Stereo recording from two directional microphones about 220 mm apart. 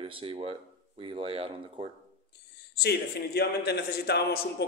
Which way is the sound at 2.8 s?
45° left (ahead or behind).